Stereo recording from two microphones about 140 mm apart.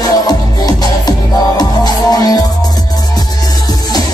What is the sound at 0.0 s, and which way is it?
Music, 25° left (ahead or behind).